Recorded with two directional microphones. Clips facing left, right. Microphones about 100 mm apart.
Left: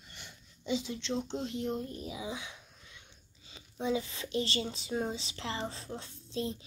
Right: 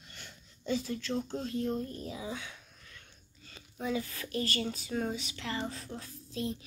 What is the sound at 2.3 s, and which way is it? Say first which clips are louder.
Speech: even; 25° left (ahead or behind).